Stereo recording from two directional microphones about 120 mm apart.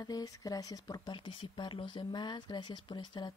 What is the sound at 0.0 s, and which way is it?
Speech, 30° left (ahead or behind).